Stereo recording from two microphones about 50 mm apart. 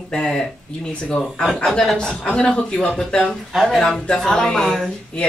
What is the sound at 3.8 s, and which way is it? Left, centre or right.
Speech, centre.